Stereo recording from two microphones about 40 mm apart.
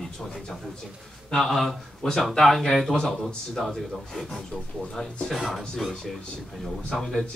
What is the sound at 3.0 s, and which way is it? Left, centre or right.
A man's voice, centre.